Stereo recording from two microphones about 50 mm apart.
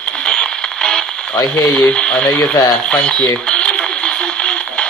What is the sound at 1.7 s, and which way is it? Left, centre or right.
Speech, left.